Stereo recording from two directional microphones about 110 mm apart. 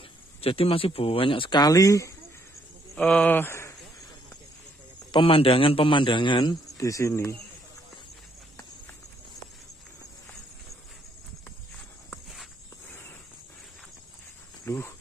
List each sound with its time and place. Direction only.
0.4 s a man's voice: 60° left (ahead or behind)
1.6 s speech: 30° left (ahead or behind)
3.0 s speech: 10° left (ahead or behind)
5.1 s a man's voice: 55° left (ahead or behind)
6.8 s speech: 30° left (ahead or behind)
14.6 s speech: 25° left (ahead or behind)